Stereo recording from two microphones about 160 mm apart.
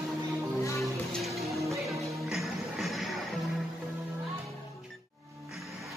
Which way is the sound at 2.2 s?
Centre (ahead or behind).